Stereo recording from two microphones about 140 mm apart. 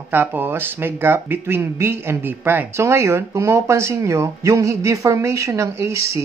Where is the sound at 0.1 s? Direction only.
15° right (ahead or behind).